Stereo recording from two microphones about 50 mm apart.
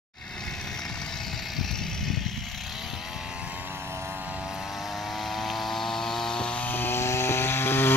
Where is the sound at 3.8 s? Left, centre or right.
Right.